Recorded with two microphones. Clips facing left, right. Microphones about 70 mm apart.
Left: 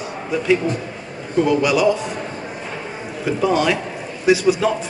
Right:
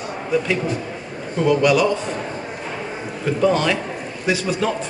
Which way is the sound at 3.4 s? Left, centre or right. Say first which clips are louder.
Even; centre.